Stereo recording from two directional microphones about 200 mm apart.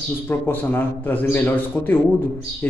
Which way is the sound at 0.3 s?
10° left (ahead or behind).